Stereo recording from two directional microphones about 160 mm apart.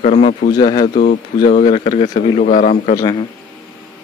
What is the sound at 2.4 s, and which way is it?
Speech, 50° left (ahead or behind).